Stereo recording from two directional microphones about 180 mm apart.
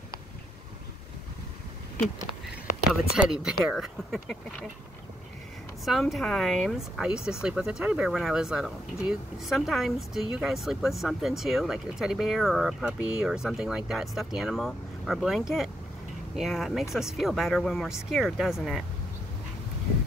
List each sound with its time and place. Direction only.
2.9 s speech: 5° right (ahead or behind)
5.9 s speech: centre (ahead or behind)